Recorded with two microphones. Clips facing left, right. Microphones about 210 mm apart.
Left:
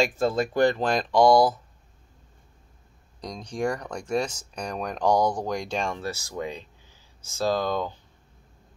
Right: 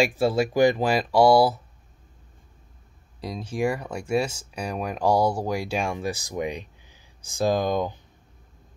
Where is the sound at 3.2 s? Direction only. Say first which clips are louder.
Right 3 dB; 5° right (ahead or behind).